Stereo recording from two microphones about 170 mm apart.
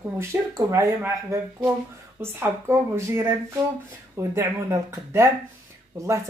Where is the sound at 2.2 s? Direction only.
15° right (ahead or behind).